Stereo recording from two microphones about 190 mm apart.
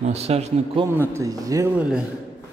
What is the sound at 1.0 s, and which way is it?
Speech, 15° right (ahead or behind).